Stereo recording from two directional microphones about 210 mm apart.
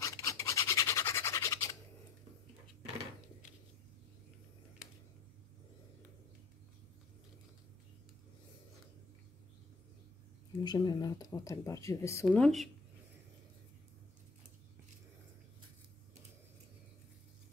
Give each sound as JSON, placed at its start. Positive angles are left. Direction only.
{"t": 0.0, "sound": "scratch", "side_deg": 15}
{"t": 10.6, "sound": "speech", "side_deg": 20}
{"t": 12.3, "sound": "speech", "side_deg": 0}